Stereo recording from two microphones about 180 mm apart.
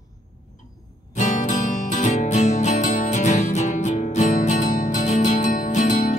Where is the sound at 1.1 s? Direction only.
45° left (ahead or behind).